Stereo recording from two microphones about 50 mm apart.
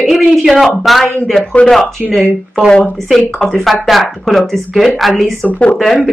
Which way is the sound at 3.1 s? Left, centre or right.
Centre.